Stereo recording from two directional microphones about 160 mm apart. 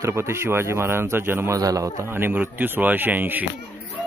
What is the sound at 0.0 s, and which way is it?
A man's voice, 15° right (ahead or behind).